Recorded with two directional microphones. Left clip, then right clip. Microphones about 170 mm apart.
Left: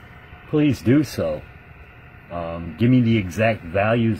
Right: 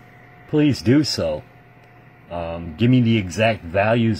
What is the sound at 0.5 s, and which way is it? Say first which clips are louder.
Speech: right 1 dB; 15° left (ahead or behind).